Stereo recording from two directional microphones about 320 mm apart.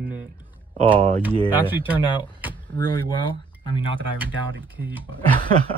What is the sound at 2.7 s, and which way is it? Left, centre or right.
Speech, centre.